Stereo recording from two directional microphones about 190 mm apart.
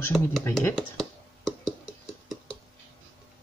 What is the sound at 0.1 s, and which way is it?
Speech, centre (ahead or behind).